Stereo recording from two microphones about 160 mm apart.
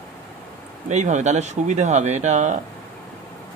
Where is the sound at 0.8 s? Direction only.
45° right (ahead or behind).